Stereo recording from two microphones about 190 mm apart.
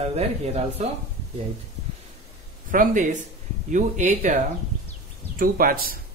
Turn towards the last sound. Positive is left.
turn(degrees=-50)  # may be behind; listen again after turning